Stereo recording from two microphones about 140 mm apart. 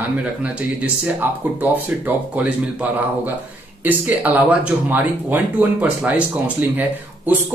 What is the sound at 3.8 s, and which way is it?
Speech, 15° right (ahead or behind).